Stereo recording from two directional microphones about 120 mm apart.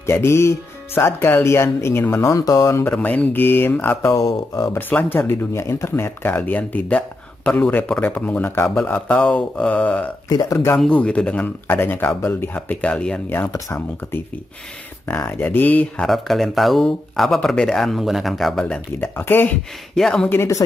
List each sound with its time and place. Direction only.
0.0 s speech: 20° left (ahead or behind)
4.7 s speech: 15° left (ahead or behind)
10.3 s speech: 25° left (ahead or behind)
10.8 s speech: 10° left (ahead or behind)
13.5 s speech: 25° left (ahead or behind)
16.1 s speech: centre (ahead or behind)
18.9 s speech: 20° left (ahead or behind)
20.0 s speech: 5° left (ahead or behind)
20.2 s speech: 25° left (ahead or behind)